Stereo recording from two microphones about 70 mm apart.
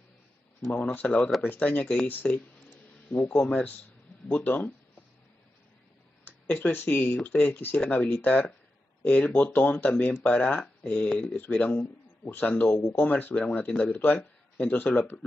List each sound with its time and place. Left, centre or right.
0.7 s speech: centre
6.2 s speech: left